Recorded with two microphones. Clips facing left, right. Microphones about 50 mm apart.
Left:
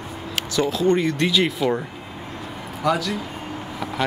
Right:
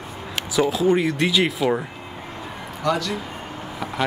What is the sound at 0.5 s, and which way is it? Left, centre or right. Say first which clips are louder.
Speech: right 1 dB; centre.